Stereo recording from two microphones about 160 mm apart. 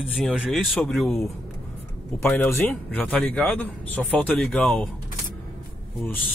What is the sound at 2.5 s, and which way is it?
Speech, 10° left (ahead or behind).